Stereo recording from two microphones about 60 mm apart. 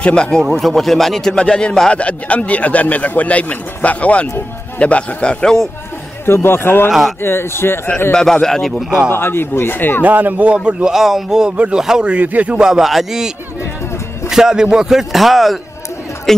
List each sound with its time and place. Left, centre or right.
0.0 s a man's voice: centre
6.2 s speech: left
6.9 s speech: centre
7.2 s speech: left
8.1 s a man's voice: centre
9.1 s speech: left
10.0 s a man's voice: right
10.9 s a man's voice: centre
12.1 s a man's voice: right
12.5 s a man's voice: centre
14.3 s a man's voice: centre